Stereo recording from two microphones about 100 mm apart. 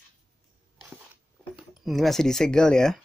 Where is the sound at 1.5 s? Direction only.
Centre (ahead or behind).